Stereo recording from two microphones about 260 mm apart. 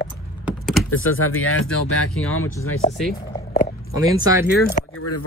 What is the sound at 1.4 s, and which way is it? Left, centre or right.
Speech, left.